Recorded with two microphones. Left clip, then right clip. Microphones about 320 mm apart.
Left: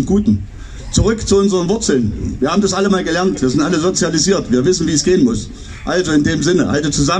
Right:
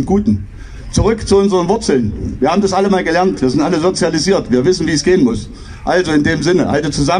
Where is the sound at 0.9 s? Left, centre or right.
Centre.